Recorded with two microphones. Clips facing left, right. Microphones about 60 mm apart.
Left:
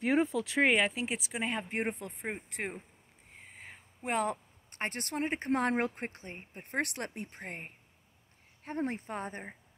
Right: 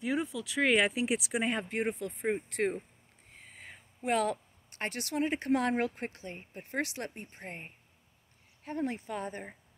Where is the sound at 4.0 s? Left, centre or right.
Left.